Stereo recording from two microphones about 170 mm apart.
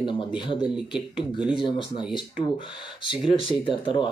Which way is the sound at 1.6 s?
30° left (ahead or behind).